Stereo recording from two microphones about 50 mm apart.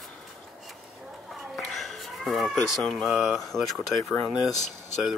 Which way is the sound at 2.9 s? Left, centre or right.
Centre.